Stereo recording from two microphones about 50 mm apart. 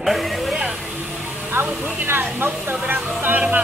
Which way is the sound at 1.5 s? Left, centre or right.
Right.